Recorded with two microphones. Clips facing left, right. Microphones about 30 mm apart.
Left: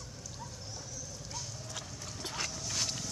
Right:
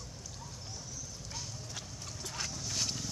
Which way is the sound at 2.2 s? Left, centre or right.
Left.